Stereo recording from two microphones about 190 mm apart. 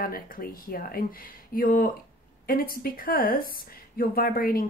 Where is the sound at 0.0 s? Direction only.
50° left (ahead or behind).